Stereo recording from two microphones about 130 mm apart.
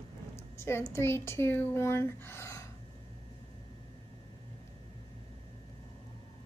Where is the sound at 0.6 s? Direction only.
20° left (ahead or behind).